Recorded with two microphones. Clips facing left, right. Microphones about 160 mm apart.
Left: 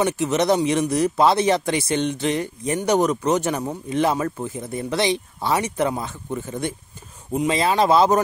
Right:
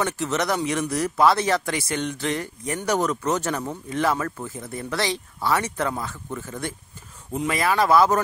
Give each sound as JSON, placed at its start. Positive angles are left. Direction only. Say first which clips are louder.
{"t": 0.0, "sound": "speech", "louder": "left 5 dB", "side_deg": 20}